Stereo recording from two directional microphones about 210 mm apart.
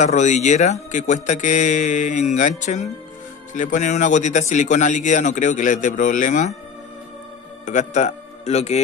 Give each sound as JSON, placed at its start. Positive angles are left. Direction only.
{"t": 0.0, "sound": "a man's voice", "side_deg": 35}
{"t": 7.6, "sound": "a man's voice", "side_deg": 35}